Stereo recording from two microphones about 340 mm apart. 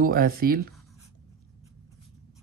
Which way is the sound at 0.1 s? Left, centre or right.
Right.